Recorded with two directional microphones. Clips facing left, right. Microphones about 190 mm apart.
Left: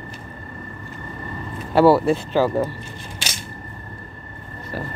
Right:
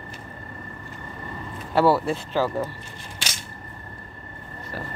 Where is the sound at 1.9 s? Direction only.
10° left (ahead or behind).